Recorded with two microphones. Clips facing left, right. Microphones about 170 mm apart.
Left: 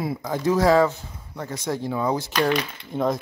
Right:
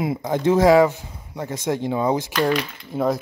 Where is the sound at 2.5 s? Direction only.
5° right (ahead or behind).